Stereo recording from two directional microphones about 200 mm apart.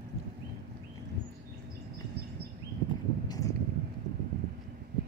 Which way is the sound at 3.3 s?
15° left (ahead or behind).